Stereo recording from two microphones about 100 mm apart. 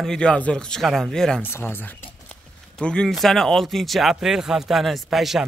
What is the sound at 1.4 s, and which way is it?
Speech, 20° left (ahead or behind).